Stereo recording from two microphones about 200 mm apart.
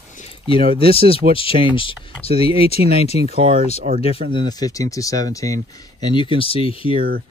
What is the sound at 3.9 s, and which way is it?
Speech, 35° right (ahead or behind).